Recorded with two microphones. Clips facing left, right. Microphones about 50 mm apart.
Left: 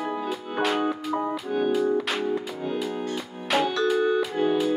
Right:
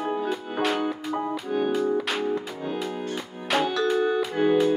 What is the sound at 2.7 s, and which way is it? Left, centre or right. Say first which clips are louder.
Music: left 2 dB; centre.